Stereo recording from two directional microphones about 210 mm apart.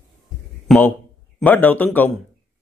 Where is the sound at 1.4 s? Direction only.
10° left (ahead or behind).